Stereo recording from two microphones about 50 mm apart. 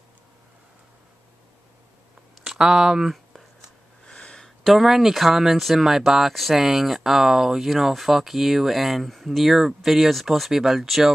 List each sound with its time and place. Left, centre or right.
2.4 s speech: centre
4.0 s a sound: centre
4.6 s speech: centre